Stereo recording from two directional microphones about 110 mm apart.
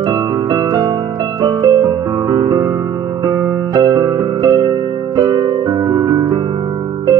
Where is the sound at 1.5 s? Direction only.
35° right (ahead or behind).